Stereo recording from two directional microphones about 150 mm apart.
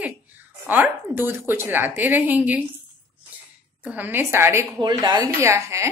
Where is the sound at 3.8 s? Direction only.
10° right (ahead or behind).